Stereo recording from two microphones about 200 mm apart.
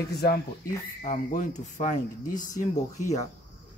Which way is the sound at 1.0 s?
40° left (ahead or behind).